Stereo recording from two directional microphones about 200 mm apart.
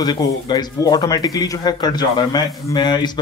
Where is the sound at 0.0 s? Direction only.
20° left (ahead or behind).